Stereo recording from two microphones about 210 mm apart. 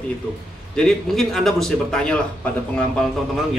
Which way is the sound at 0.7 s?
Centre (ahead or behind).